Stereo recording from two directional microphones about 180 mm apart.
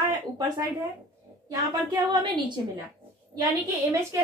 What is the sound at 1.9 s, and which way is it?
Speech, 25° right (ahead or behind).